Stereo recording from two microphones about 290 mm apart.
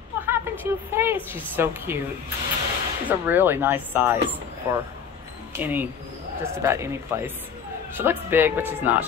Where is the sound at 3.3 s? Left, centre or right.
Centre.